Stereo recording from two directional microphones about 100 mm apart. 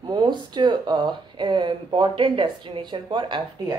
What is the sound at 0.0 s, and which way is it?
Speech, 50° right (ahead or behind).